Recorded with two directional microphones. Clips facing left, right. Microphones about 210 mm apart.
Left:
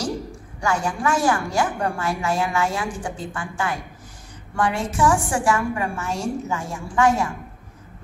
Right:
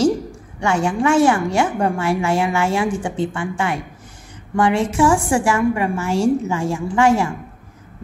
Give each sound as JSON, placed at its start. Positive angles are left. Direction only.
{"t": 0.6, "sound": "a woman's voice", "side_deg": -25}